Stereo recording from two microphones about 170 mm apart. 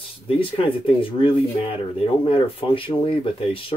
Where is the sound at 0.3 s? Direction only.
30° left (ahead or behind).